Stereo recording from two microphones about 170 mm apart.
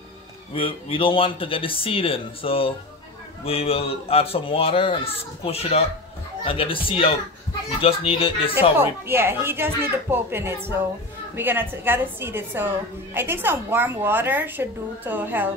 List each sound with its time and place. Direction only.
0.6 s speech: 30° left (ahead or behind)
8.7 s a woman's voice: 15° right (ahead or behind)